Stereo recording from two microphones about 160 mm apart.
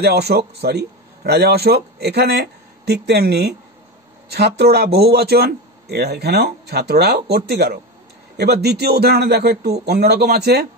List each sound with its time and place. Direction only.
0.0 s a man's voice: 90° right